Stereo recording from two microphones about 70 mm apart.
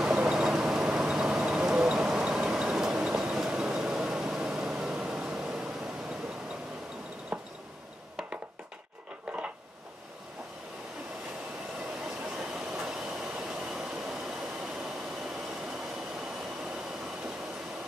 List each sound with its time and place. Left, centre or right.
0.0 s vehicle: centre
7.3 s a sound: centre
12.3 s train: centre